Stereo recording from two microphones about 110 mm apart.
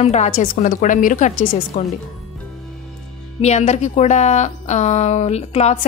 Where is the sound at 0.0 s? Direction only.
90° left.